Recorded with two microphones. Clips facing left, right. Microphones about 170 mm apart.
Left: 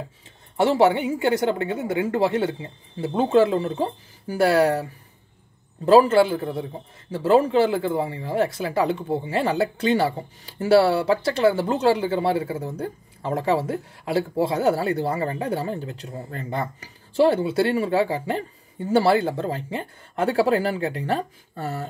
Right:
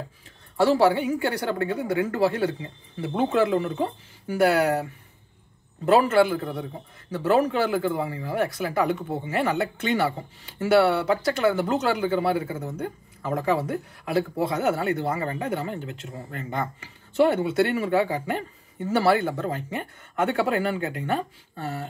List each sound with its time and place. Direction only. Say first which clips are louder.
0.6 s speech: left 1 dB; 20° left (ahead or behind)
5.9 s speech: left 3 dB; 30° left (ahead or behind)